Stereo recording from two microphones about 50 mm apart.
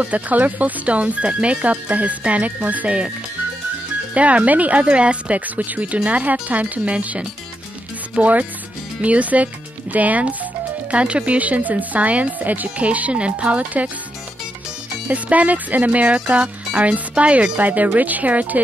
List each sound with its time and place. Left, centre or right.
0.0 s speech: right
4.1 s speech: right
15.0 s speech: right